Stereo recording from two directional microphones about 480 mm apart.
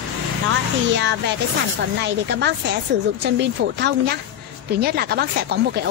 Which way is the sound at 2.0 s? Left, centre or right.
Right.